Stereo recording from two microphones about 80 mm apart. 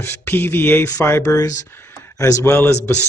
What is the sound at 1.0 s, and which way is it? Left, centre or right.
Speech, left.